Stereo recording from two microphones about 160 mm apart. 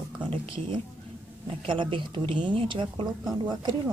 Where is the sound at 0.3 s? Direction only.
35° right (ahead or behind).